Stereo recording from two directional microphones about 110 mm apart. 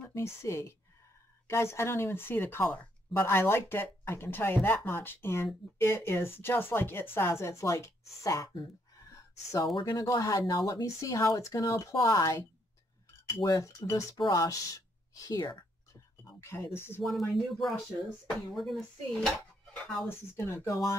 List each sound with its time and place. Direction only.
0.1 s speech: 25° left (ahead or behind)
9.1 s a sound: 30° left (ahead or behind)
9.9 s speech: 30° left (ahead or behind)
17.0 s speech: centre (ahead or behind)
20.1 s speech: 20° left (ahead or behind)